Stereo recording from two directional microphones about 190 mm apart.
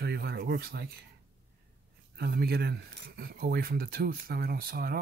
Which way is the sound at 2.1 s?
60° right (ahead or behind).